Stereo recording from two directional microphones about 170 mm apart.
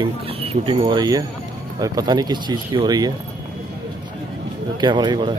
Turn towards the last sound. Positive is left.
turn(degrees=-25)  # may be behind; listen again after turning